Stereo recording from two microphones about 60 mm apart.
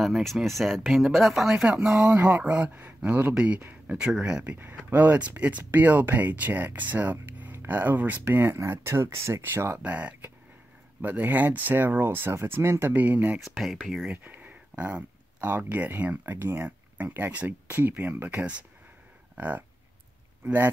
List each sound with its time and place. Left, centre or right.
0.0 s speech: centre
2.0 s speech: right
4.8 s speech: right
8.5 s speech: right
9.8 s speech: right
12.9 s speech: right
13.4 s speech: centre
14.1 s a sound: right
15.4 s speech: right
16.6 s speech: right
18.3 s speech: right